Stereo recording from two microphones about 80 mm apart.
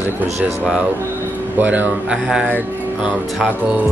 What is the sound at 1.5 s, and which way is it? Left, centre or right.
Speech, right.